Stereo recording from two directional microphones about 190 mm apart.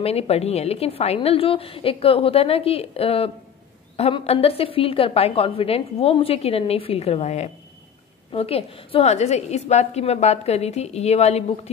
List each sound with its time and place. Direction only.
0.0 s a woman's voice: 30° left (ahead or behind)